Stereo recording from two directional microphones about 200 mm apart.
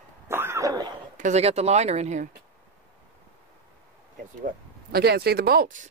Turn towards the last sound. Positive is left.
turn(degrees=-45)  # may be behind; listen again after turning